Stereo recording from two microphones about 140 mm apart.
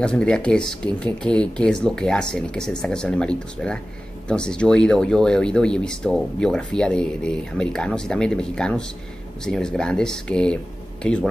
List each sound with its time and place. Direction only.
0.0 s speech: 5° left (ahead or behind)